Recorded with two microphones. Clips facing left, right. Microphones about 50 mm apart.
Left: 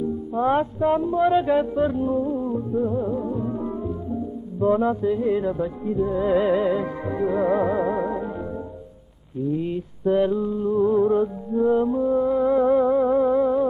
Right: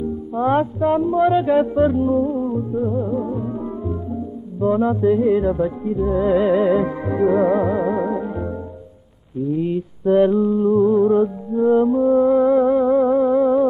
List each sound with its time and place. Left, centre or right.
0.3 s music: centre
1.6 s mantra: centre
2.1 s music: centre
2.7 s music: centre
5.2 s mantra: centre
6.7 s music: centre
9.5 s mantra: centre
10.8 s music: centre